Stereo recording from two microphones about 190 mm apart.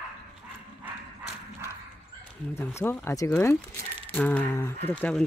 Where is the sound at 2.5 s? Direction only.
10° left (ahead or behind).